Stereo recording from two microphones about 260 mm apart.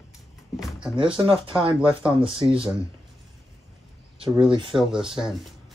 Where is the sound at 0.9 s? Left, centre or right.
Centre.